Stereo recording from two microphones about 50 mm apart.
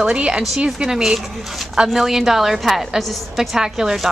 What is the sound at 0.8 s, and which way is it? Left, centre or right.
A woman's voice, centre.